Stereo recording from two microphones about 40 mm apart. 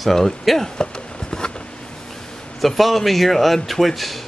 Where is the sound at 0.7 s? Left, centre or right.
Centre.